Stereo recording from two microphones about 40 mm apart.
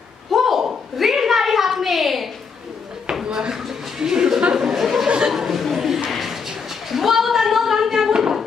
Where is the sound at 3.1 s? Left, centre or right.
Centre.